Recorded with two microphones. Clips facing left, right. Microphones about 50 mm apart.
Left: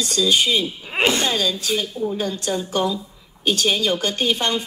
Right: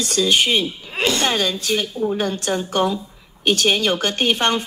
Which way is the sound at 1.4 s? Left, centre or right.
Right.